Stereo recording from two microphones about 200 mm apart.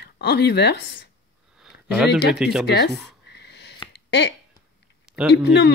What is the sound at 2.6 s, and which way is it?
Speech, 55° left (ahead or behind).